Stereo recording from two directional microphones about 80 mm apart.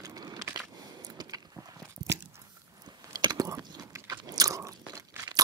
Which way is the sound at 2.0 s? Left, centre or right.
Right.